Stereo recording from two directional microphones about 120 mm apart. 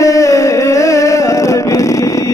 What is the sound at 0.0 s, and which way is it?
Music, 25° left (ahead or behind).